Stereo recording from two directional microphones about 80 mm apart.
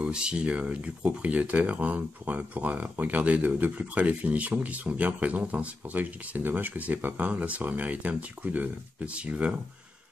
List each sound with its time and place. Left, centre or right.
0.0 s speech: centre